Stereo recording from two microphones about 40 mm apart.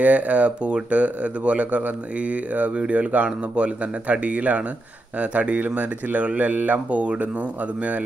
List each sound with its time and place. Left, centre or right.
0.0 s speech: right